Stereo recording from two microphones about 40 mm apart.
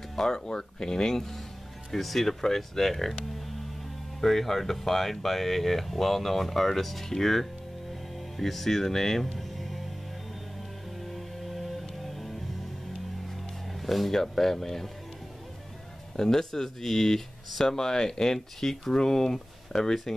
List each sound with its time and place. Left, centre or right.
0.1 s a sound: centre
0.5 s speech: centre
4.2 s speech: centre
11.1 s music: centre
13.8 s speech: centre
16.2 s speech: centre